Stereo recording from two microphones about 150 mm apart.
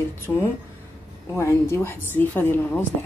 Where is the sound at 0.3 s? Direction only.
10° left (ahead or behind).